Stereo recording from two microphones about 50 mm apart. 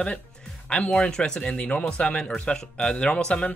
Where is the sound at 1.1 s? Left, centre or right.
Centre.